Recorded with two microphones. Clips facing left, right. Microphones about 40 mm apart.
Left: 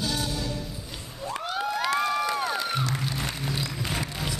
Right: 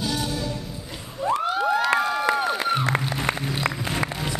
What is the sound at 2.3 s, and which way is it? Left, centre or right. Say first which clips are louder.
Music: right 4 dB; centre.